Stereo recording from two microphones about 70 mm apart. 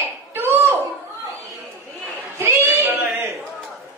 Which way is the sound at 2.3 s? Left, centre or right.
Right.